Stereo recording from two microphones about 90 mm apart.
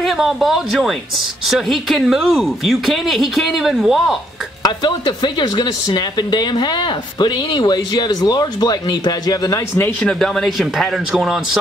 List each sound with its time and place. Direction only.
0.0 s speech: centre (ahead or behind)
4.6 s speech: 50° left (ahead or behind)
9.9 s speech: 5° left (ahead or behind)